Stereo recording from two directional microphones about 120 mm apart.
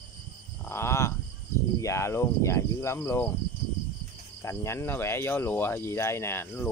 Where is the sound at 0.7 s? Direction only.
20° left (ahead or behind).